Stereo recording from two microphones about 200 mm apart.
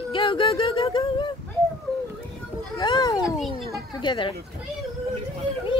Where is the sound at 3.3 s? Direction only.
Centre (ahead or behind).